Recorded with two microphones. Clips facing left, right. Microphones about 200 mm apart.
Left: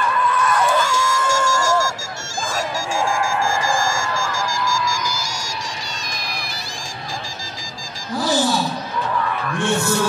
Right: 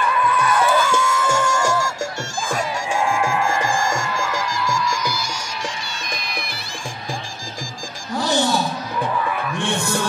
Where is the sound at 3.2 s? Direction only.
60° right (ahead or behind).